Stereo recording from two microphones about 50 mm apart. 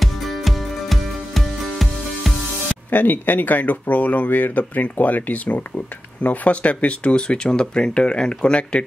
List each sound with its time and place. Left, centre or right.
0.0 s music: centre
2.9 s speech: left